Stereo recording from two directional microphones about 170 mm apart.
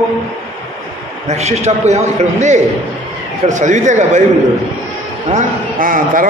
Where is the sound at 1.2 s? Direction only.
40° right (ahead or behind).